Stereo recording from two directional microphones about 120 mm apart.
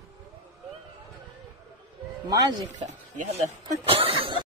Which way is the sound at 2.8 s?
90° right.